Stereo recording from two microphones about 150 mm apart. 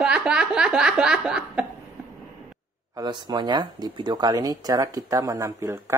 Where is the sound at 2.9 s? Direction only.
30° right (ahead or behind).